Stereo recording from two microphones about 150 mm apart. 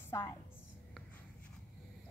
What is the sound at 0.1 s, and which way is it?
Speech, 15° left (ahead or behind).